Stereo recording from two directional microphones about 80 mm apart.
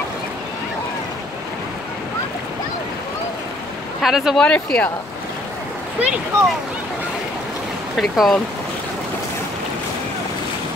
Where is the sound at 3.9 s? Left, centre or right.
Centre.